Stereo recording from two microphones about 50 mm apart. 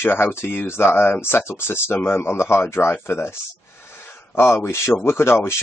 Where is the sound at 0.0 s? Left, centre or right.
Left.